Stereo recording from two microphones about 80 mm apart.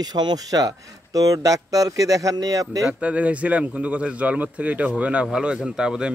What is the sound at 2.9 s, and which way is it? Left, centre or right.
A man's voice, centre.